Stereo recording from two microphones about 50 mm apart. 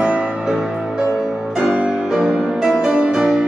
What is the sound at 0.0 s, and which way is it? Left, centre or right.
Music, centre.